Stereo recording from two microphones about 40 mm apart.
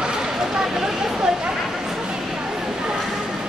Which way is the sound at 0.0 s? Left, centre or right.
Centre.